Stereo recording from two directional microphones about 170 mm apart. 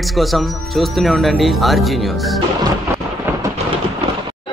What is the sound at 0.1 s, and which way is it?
Speech, centre (ahead or behind).